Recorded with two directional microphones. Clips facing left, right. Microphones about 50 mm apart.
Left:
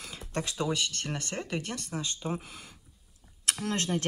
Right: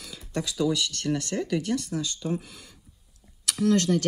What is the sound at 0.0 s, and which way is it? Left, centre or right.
Speech, left.